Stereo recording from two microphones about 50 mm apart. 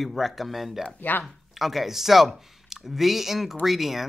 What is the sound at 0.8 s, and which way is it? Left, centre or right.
Speech, left.